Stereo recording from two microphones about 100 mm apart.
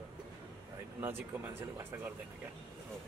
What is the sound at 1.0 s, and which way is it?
Speech, 20° right (ahead or behind).